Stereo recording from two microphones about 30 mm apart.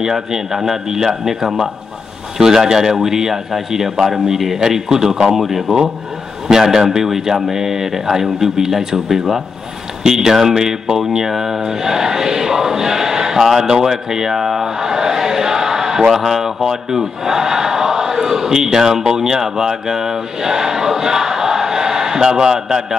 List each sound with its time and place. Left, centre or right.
0.0 s speech: centre
13.8 s a sound: centre
16.0 s a man's voice: centre